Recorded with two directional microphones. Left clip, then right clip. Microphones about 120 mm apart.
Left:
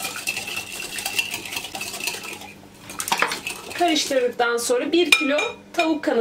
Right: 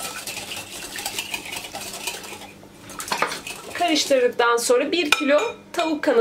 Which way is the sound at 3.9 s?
35° right (ahead or behind).